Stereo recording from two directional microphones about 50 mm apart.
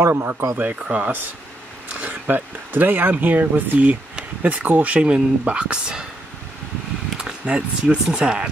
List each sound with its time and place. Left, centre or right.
0.0 s speech: right
0.6 s speech: right
2.0 s speech: right; by 6.0 s centre
7.4 s speech: right